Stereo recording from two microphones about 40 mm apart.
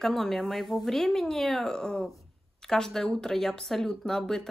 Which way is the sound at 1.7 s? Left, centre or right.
Centre.